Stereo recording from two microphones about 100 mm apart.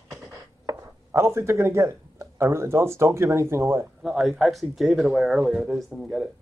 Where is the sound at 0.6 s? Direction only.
25° right (ahead or behind).